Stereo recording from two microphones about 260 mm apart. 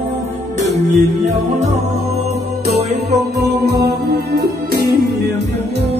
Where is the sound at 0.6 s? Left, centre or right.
Right.